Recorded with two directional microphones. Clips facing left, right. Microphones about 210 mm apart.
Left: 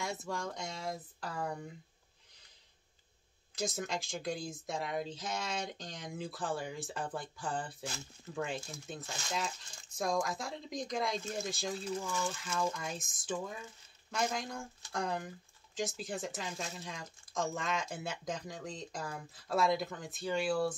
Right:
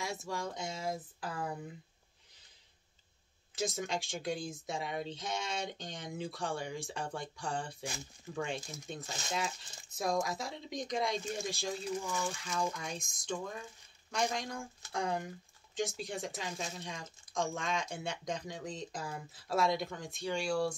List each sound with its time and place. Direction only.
0.0 s speech: centre (ahead or behind)
3.5 s speech: centre (ahead or behind)
12.1 s mechanisms: 15° right (ahead or behind)
12.5 s speech: centre (ahead or behind)